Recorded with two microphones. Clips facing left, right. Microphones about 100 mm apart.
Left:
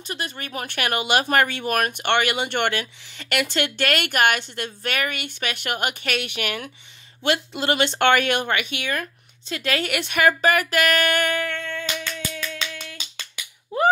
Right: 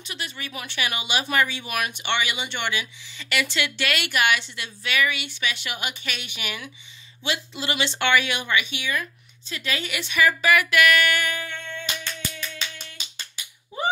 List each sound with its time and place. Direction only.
0.0 s speech: 45° left (ahead or behind)
11.4 s humming: 90° left
13.7 s a sound: 90° left